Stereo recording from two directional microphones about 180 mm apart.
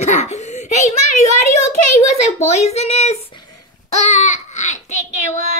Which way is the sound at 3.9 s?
40° left (ahead or behind).